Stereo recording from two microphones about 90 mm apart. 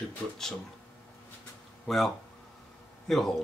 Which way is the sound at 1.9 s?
Centre (ahead or behind).